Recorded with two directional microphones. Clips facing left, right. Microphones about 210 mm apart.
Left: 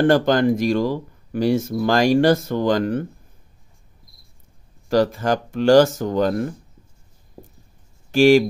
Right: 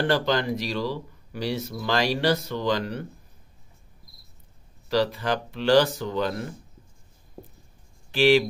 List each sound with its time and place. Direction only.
0.0 s speech: 50° left (ahead or behind)
4.8 s speech: 45° left (ahead or behind)
8.1 s speech: 45° left (ahead or behind)